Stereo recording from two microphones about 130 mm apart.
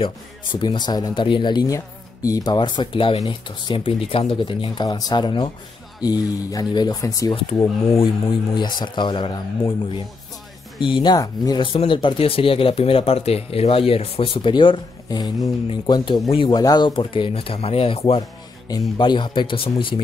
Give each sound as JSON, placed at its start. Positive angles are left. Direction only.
{"t": 0.0, "sound": "speech", "side_deg": 40}
{"t": 8.5, "sound": "speech", "side_deg": 35}
{"t": 18.7, "sound": "speech", "side_deg": 35}